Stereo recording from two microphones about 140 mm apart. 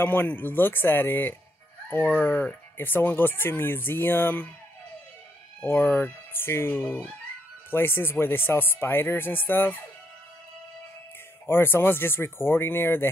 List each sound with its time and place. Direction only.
0.0 s speech: 15° left (ahead or behind)
5.6 s speech: 15° left (ahead or behind)
11.4 s speech: 15° left (ahead or behind)